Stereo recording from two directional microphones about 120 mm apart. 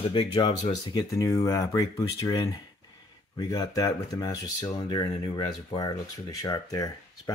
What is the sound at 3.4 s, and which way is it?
Speech, 30° left (ahead or behind).